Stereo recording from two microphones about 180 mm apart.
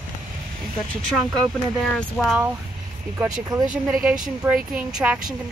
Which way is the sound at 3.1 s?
20° right (ahead or behind).